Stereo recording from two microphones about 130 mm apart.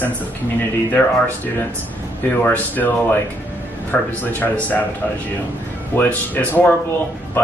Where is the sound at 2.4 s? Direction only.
15° left (ahead or behind).